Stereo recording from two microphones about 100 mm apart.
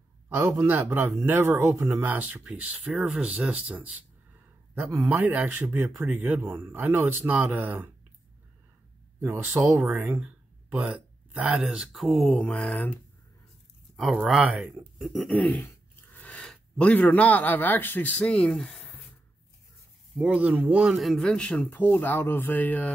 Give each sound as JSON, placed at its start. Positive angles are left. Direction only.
{"t": 1.0, "sound": "speech", "side_deg": -30}
{"t": 9.2, "sound": "speech", "side_deg": -25}
{"t": 10.0, "sound": "speech", "side_deg": -15}
{"t": 13.9, "sound": "a man's voice", "side_deg": 0}
{"t": 14.4, "sound": "speech", "side_deg": -15}
{"t": 15.0, "sound": "a sound", "side_deg": -5}
{"t": 15.2, "sound": "speech", "side_deg": 10}
{"t": 20.2, "sound": "speech", "side_deg": -15}
{"t": 21.0, "sound": "a man's voice", "side_deg": 0}
{"t": 21.6, "sound": "speech", "side_deg": 20}